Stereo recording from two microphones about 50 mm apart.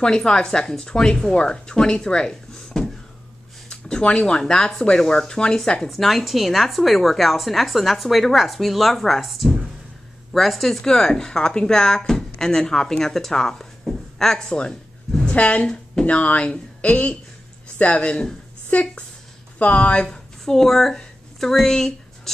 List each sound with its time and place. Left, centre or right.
0.0 s speech: centre
5.9 s a woman's voice: centre
15.3 s speech: left
20.1 s a woman's voice: centre